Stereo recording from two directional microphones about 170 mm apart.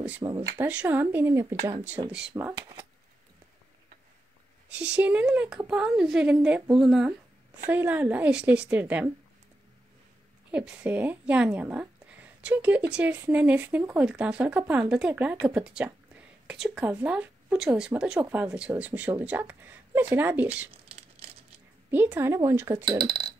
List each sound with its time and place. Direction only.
0.2 s speech: 20° right (ahead or behind)
0.6 s speech: 10° right (ahead or behind)
4.6 s speech: 5° right (ahead or behind)
10.5 s speech: 5° right (ahead or behind)
21.9 s speech: 10° right (ahead or behind)